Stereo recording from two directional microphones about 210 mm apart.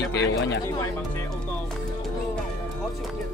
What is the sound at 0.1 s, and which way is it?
Speech, 50° left (ahead or behind).